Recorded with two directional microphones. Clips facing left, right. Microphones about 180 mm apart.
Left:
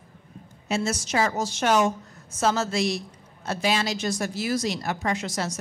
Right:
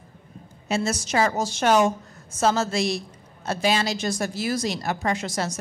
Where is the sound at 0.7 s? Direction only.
35° right (ahead or behind).